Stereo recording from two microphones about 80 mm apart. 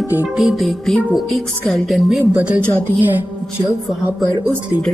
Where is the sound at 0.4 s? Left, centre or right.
Centre.